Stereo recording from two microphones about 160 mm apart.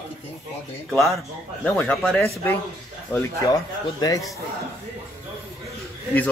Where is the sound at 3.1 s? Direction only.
20° left (ahead or behind).